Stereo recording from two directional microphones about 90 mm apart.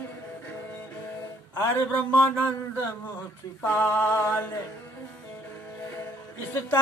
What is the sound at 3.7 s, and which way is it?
Mantra, 25° left (ahead or behind).